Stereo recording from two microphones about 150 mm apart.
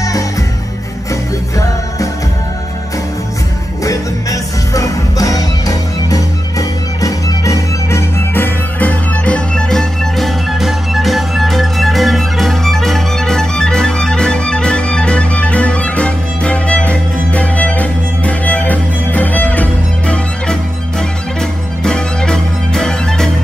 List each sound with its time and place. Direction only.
3.8 s music: 20° left (ahead or behind); by 23.3 s 5° left (ahead or behind)